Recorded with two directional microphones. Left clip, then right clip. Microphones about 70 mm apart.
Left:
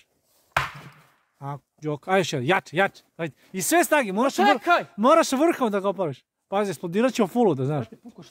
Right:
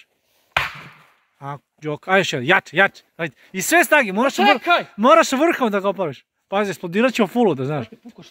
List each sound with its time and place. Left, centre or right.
1.4 s speech: centre
4.4 s speech: right
4.9 s speech: centre